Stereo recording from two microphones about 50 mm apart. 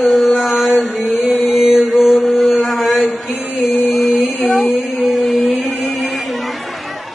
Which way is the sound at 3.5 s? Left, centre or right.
Centre.